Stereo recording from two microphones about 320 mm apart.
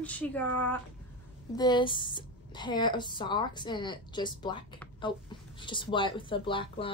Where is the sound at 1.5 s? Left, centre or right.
Centre.